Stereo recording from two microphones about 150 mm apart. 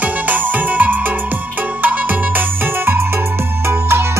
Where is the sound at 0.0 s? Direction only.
10° right (ahead or behind).